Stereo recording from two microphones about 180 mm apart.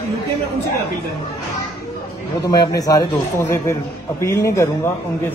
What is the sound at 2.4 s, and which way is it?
A man's voice, 20° left (ahead or behind).